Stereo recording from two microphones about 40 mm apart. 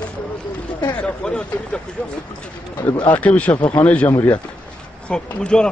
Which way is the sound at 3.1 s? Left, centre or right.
Left.